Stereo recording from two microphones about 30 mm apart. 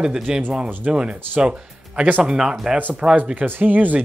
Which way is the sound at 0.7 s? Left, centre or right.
Right.